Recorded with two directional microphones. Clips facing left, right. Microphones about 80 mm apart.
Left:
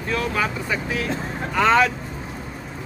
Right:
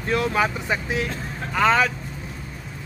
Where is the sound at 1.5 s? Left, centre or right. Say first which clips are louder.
Left 2 dB; centre.